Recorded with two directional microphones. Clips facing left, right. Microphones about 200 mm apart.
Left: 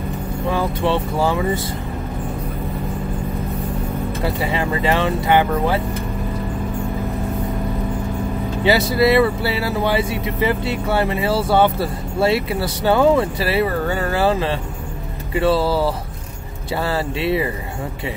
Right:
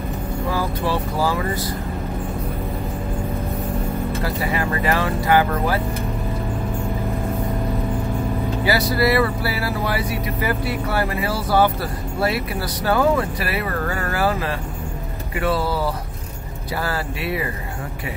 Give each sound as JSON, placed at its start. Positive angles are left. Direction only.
{"t": 0.5, "sound": "speech", "side_deg": 25}
{"t": 4.2, "sound": "speech", "side_deg": 25}
{"t": 8.6, "sound": "speech", "side_deg": 25}